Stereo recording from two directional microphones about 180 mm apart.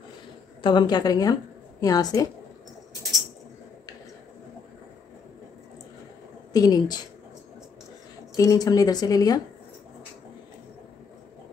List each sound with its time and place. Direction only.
0.6 s speech: 25° left (ahead or behind)
6.5 s speech: 20° left (ahead or behind)
8.4 s speech: 20° left (ahead or behind)